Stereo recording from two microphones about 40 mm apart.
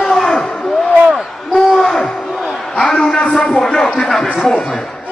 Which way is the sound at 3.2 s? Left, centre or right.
Centre.